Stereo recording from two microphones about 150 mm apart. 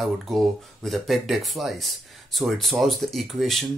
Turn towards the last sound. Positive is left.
turn(degrees=0)  # may be behind; listen again after turning